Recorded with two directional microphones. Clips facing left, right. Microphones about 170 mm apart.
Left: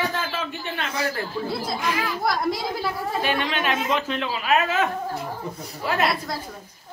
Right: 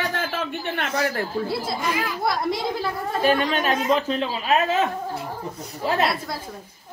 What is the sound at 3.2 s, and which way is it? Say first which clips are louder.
Speech: right 6 dB; 40° right (ahead or behind).